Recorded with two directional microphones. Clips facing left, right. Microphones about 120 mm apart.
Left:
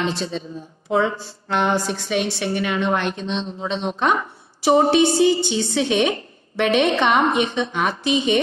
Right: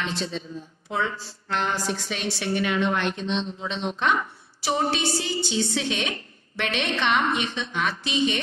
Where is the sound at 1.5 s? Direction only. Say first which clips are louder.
Left 6 dB; 60° left (ahead or behind); by 4.2 s 40° left (ahead or behind).